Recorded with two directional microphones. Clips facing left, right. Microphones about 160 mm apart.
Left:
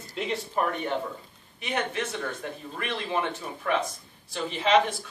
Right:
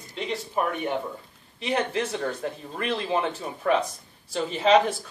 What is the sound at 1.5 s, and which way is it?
Speech, 30° right (ahead or behind).